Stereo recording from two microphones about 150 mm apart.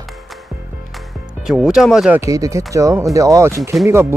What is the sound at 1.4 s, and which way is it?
Speech, 5° right (ahead or behind).